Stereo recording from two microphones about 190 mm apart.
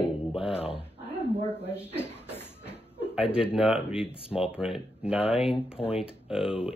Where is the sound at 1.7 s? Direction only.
10° left (ahead or behind).